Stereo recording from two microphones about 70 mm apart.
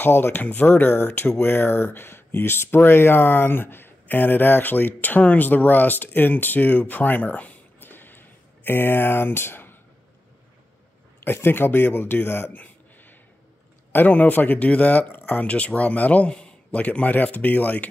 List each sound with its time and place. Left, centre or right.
0.0 s speech: left
11.2 s speech: left